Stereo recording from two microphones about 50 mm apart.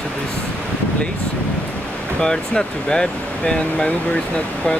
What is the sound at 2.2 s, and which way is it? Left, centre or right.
Speech, centre.